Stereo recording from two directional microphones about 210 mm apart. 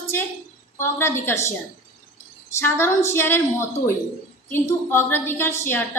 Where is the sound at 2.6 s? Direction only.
10° left (ahead or behind).